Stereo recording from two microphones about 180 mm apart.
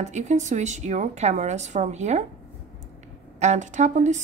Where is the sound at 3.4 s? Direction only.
40° right (ahead or behind).